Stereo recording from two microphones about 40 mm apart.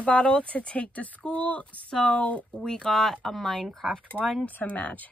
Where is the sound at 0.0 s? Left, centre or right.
Left.